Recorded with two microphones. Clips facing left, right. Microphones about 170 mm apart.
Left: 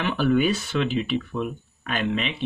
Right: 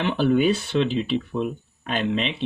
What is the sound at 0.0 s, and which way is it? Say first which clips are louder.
Speech: right 2 dB; 25° right (ahead or behind).